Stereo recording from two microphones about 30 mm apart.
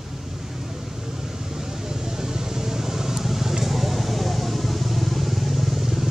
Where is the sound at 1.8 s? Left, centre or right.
Centre.